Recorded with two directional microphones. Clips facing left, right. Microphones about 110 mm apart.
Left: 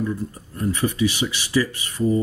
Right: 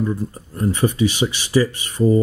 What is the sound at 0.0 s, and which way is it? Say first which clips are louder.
Speech: right 3 dB; 30° right (ahead or behind).